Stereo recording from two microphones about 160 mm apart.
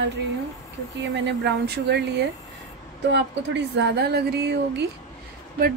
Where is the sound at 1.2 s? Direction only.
90° right.